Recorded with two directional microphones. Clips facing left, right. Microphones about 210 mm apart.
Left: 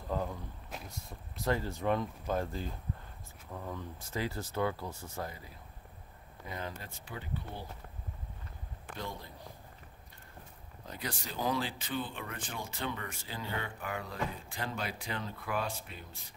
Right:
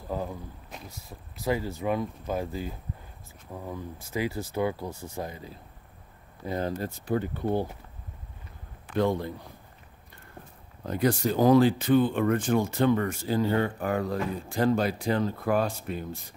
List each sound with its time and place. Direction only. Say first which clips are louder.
0.1 s speech: right 3 dB; 10° right (ahead or behind)
6.4 s speech: right 12 dB; 35° right (ahead or behind); by 7.6 s 55° right (ahead or behind)
8.9 s speech: right 17 dB; 65° right (ahead or behind)
10.9 s speech: right 17 dB; 50° right (ahead or behind)